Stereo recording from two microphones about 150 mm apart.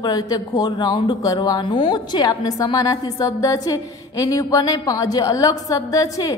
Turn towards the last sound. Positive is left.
turn(degrees=25)  # may be behind; listen again after turning